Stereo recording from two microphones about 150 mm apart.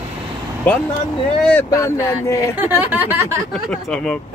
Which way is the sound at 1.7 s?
20° left (ahead or behind).